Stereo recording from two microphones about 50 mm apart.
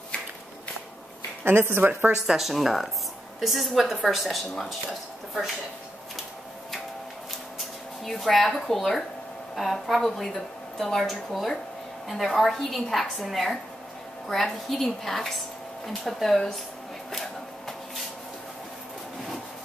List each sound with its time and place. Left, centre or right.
1.4 s speech: right
1.9 s speech: right
2.2 s a woman's voice: centre
7.5 s a woman's voice: centre